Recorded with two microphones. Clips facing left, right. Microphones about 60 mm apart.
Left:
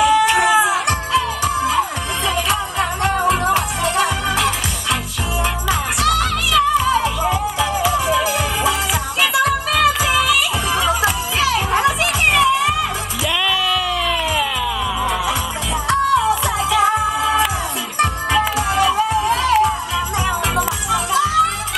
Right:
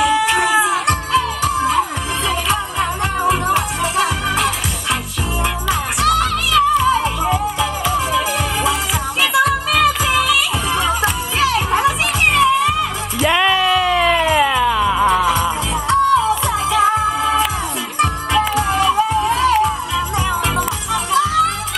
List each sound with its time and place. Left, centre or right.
0.0 s music: centre
13.3 s music: right
15.9 s music: centre